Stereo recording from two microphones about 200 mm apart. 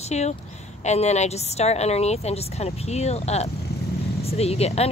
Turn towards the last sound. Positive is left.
turn(degrees=30)  # may be behind; listen again after turning